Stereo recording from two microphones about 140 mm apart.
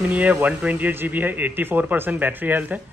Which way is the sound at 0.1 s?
10° right (ahead or behind).